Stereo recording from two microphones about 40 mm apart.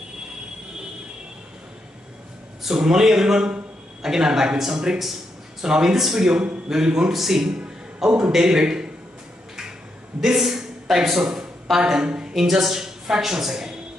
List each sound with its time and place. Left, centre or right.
2.6 s a man's voice: centre
10.2 s a man's voice: centre; by 12.4 s right
12.4 s a woman's voice: centre